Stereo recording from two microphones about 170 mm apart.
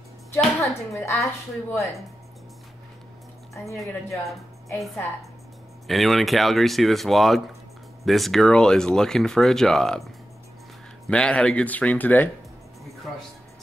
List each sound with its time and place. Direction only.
0.9 s speech: 15° left (ahead or behind)
3.6 s speech: 15° left (ahead or behind)
4.7 s speech: centre (ahead or behind)
11.1 s speech: 5° left (ahead or behind)